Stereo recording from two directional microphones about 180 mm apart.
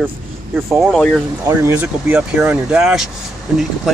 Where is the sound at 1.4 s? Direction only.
10° right (ahead or behind).